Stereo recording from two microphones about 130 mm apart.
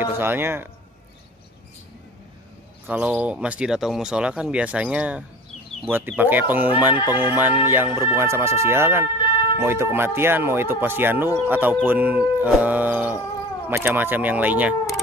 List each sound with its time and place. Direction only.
0.0 s speech: 15° right (ahead or behind)
2.9 s speech: 10° right (ahead or behind)